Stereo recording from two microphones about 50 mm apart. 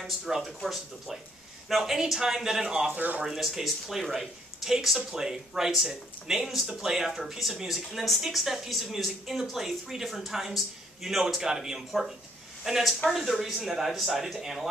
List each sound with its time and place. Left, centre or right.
0.0 s speech: centre
2.9 s speech: right
3.3 s speech: centre